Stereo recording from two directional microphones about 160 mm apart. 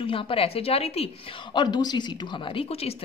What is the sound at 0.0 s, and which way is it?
A woman's voice, 35° left (ahead or behind).